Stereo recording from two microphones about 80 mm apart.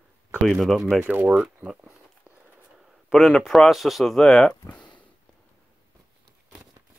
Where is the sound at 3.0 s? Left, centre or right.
Centre.